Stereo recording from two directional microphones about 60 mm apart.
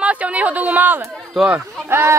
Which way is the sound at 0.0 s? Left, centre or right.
Right.